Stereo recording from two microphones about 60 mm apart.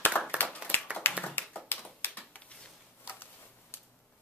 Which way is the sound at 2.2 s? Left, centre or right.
Left.